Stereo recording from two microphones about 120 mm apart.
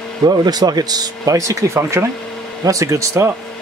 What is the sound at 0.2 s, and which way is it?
Speech, 35° right (ahead or behind).